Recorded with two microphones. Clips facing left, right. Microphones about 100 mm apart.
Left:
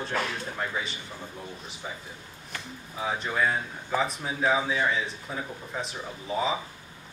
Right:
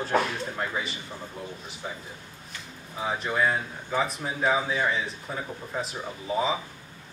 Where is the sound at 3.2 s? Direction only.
5° right (ahead or behind).